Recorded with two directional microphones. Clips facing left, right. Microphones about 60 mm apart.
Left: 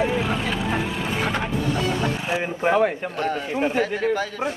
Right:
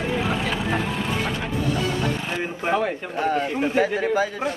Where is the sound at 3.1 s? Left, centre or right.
Centre.